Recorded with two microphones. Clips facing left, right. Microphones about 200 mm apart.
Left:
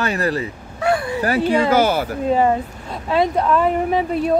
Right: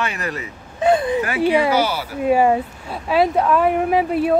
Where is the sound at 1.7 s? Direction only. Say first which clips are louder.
Left 3 dB; 50° left (ahead or behind).